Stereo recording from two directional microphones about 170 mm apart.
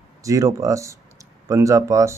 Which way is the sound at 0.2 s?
20° right (ahead or behind).